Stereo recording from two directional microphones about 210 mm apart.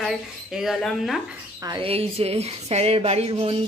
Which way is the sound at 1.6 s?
20° right (ahead or behind).